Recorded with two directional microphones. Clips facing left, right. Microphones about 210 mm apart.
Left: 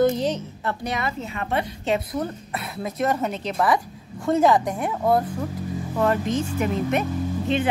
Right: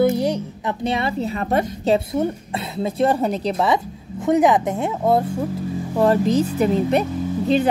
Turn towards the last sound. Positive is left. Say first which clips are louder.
# right 5 dB
turn(degrees=-35)  # may be behind; listen again after turning